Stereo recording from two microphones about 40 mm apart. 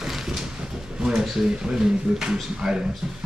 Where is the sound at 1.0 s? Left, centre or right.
Centre.